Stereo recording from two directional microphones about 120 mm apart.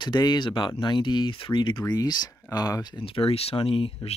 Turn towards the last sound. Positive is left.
turn(degrees=55)  # may be behind; listen again after turning